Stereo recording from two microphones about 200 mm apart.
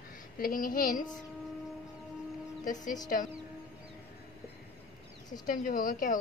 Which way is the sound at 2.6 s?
40° left (ahead or behind).